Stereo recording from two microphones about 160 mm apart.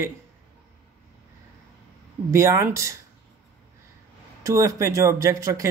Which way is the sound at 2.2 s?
20° right (ahead or behind).